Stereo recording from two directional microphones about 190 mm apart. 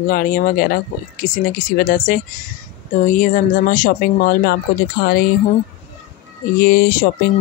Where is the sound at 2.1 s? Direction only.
45° left (ahead or behind).